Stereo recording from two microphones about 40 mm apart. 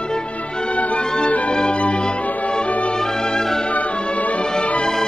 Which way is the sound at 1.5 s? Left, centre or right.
Left.